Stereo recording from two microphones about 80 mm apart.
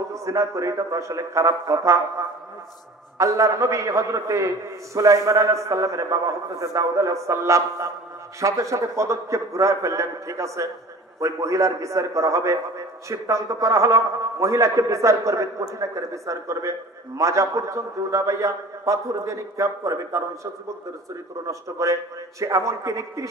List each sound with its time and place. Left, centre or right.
0.1 s a man's voice: right